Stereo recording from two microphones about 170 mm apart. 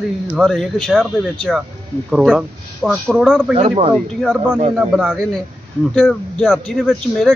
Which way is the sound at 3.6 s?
35° right (ahead or behind).